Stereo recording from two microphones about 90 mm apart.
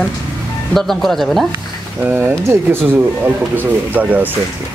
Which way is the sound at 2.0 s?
25° right (ahead or behind).